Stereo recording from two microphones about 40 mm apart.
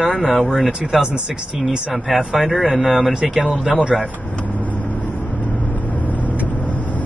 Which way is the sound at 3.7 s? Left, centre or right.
Centre.